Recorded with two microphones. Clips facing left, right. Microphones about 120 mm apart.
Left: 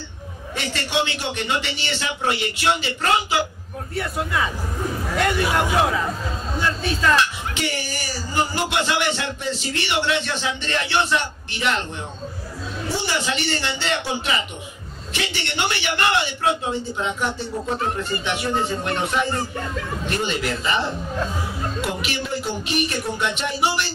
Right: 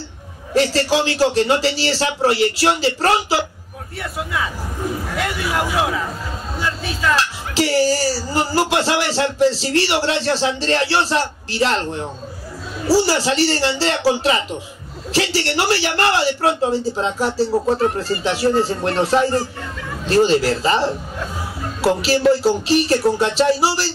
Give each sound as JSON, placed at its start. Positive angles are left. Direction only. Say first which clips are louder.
{"t": 0.6, "sound": "speech", "louder": "right 8 dB", "side_deg": -35}
{"t": 3.9, "sound": "a man's voice", "louder": "left 1 dB", "side_deg": 0}
{"t": 7.7, "sound": "speech", "louder": "right 13 dB", "side_deg": -35}
{"t": 12.8, "sound": "speech", "louder": "right 9 dB", "side_deg": -35}
{"t": 15.1, "sound": "speech", "louder": "right 8 dB", "side_deg": -35}